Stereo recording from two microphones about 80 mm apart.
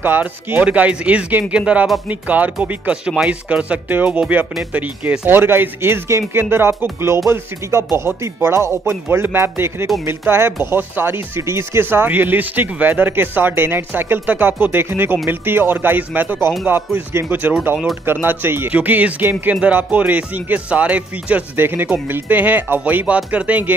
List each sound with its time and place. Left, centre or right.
0.0 s speech: right